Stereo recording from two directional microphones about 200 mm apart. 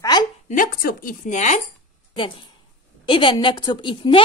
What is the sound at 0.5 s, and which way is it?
Speech, 45° left (ahead or behind).